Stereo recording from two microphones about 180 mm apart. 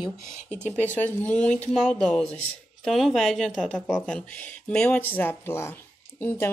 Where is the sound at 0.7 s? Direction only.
10° left (ahead or behind).